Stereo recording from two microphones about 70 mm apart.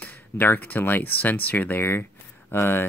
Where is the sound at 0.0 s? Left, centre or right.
Left.